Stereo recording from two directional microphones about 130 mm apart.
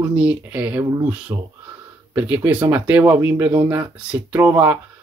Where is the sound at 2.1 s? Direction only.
15° right (ahead or behind).